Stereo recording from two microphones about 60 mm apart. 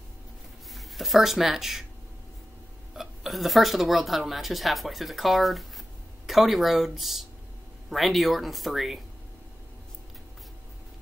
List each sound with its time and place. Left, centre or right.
0.7 s speech: centre
2.9 s speech: centre